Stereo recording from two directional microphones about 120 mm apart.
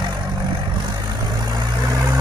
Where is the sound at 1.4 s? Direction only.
30° right (ahead or behind).